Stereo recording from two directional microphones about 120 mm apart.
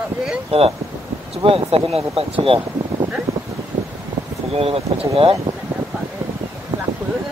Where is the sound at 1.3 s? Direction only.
55° right (ahead or behind).